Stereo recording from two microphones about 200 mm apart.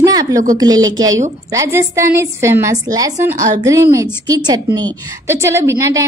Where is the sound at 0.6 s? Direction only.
20° right (ahead or behind).